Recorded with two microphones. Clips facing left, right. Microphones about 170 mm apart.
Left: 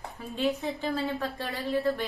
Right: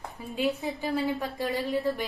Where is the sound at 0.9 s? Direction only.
15° right (ahead or behind).